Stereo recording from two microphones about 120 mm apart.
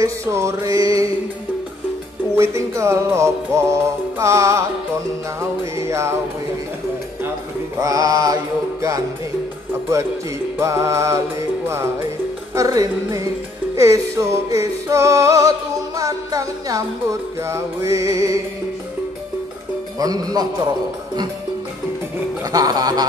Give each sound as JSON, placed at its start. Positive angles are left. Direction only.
{"t": 0.0, "sound": "music", "side_deg": -25}
{"t": 2.3, "sound": "music", "side_deg": -25}
{"t": 5.8, "sound": "music", "side_deg": -25}
{"t": 7.8, "sound": "music", "side_deg": -30}
{"t": 10.6, "sound": "music", "side_deg": -25}
{"t": 20.0, "sound": "a man's voice", "side_deg": -30}
{"t": 22.4, "sound": "a man's voice", "side_deg": -30}